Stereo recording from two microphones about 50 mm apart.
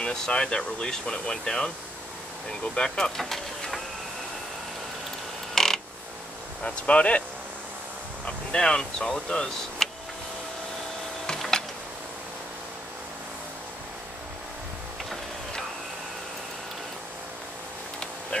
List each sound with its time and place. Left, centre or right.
0.0 s speech: centre
3.2 s vehicle: centre
5.5 s creak: centre
6.6 s speech: left
8.3 s speech: centre
11.3 s a sound: centre